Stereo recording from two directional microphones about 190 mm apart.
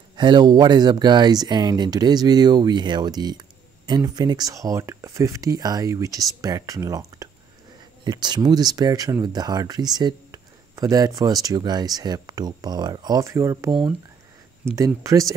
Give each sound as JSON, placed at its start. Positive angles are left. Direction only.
{"t": 0.1, "sound": "speech", "side_deg": -25}
{"t": 14.8, "sound": "speech", "side_deg": -15}